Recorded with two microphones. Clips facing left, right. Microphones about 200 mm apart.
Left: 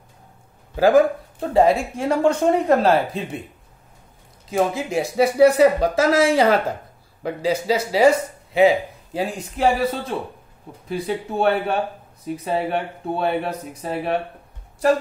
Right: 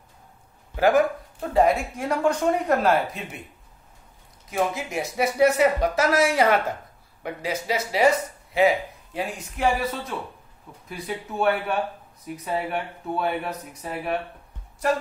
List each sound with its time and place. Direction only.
0.7 s speech: 30° left (ahead or behind)
4.5 s a man's voice: 30° left (ahead or behind)